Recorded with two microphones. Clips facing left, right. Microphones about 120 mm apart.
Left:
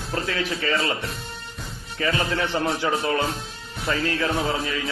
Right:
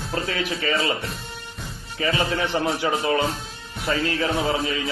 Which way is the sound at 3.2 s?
Centre (ahead or behind).